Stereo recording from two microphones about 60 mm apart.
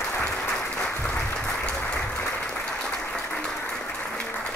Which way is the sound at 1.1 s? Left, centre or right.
Left.